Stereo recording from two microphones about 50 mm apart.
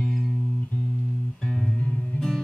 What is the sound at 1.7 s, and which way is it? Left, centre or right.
Music, left.